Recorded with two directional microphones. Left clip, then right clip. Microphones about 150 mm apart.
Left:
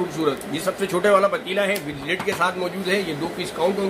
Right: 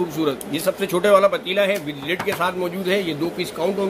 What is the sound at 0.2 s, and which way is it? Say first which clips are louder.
Speech: left 1 dB; 35° right (ahead or behind).